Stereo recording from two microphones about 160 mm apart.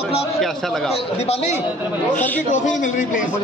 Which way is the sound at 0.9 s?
40° left (ahead or behind).